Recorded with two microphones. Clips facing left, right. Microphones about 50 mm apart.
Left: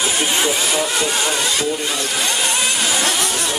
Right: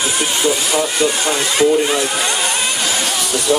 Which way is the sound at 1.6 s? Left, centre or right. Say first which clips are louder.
Right 8 dB; right.